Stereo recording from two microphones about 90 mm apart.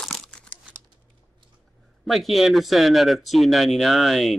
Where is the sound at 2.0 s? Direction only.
Centre (ahead or behind).